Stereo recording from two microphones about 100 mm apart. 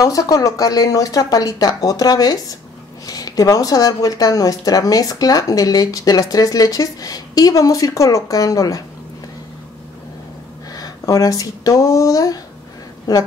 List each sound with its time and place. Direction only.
0.0 s speech: 35° left (ahead or behind)
10.7 s speech: 40° left (ahead or behind)